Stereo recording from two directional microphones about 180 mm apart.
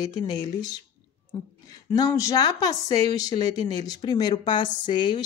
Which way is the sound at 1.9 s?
20° left (ahead or behind).